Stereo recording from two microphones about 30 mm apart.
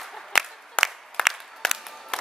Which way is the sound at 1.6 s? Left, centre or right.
Left.